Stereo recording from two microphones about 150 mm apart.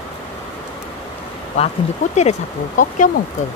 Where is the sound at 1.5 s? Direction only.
45° left (ahead or behind).